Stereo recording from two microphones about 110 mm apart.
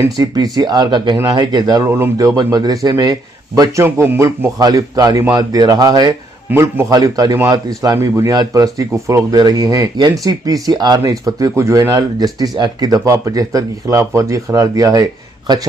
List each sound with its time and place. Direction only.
0.0 s speech: 35° right (ahead or behind)
3.8 s a man's voice: 20° right (ahead or behind)
4.6 s speech: 35° right (ahead or behind)
6.5 s a man's voice: 25° right (ahead or behind)
6.9 s speech: 35° right (ahead or behind)